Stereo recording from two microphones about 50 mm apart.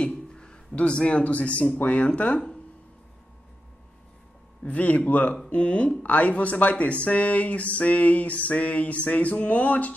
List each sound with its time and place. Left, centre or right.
0.0 s music: centre
0.7 s speech: left
4.6 s speech: left